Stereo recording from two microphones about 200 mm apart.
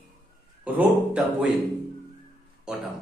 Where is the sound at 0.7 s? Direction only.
5° right (ahead or behind).